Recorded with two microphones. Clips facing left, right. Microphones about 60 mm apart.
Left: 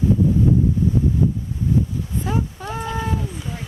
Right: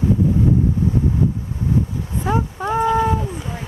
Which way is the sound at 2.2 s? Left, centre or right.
Right.